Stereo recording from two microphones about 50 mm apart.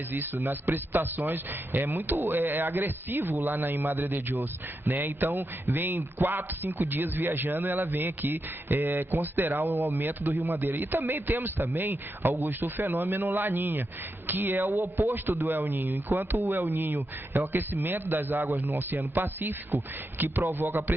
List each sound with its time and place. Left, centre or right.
0.1 s a man's voice: right
14.7 s a man's voice: right
15.4 s a man's voice: right